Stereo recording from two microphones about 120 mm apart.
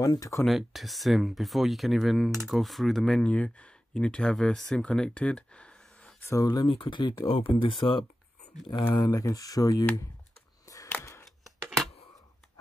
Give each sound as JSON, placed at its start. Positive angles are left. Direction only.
{"t": 0.0, "sound": "speech", "side_deg": 30}
{"t": 0.5, "sound": "speech", "side_deg": 0}
{"t": 6.2, "sound": "speech", "side_deg": 25}
{"t": 6.7, "sound": "speech", "side_deg": 40}
{"t": 8.9, "sound": "speech", "side_deg": 30}
{"t": 10.9, "sound": "a sound", "side_deg": 20}
{"t": 11.4, "sound": "scissors", "side_deg": 0}